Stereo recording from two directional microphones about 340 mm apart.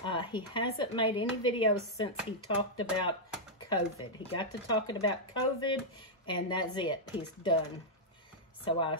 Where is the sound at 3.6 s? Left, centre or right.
Centre.